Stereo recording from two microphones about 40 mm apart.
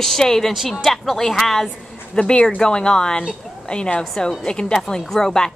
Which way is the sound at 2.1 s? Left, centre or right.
Left.